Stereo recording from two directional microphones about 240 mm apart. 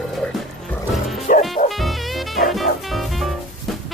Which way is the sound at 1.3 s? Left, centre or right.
Left.